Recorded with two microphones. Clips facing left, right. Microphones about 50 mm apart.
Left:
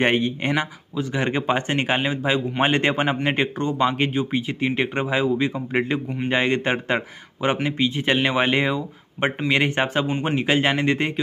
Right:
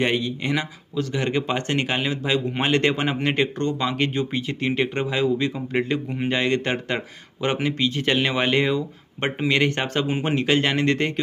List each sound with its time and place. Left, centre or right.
0.0 s a man's voice: left; by 11.1 s centre